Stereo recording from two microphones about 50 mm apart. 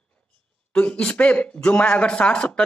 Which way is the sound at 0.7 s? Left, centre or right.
Centre.